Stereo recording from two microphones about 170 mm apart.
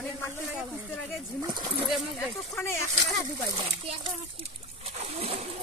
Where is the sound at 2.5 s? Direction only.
15° left (ahead or behind).